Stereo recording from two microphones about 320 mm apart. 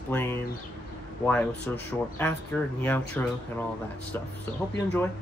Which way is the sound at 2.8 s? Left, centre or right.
Centre.